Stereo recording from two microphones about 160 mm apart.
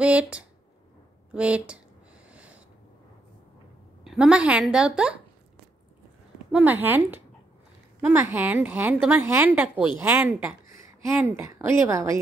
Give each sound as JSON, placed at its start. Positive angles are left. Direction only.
{"t": 0.0, "sound": "a woman's voice", "side_deg": -5}
{"t": 2.3, "sound": "snort", "side_deg": -10}
{"t": 4.0, "sound": "a woman's voice", "side_deg": -5}
{"t": 6.5, "sound": "a woman's voice", "side_deg": -10}